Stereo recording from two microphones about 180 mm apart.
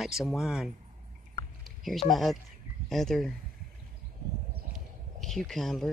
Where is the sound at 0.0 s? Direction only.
Centre (ahead or behind).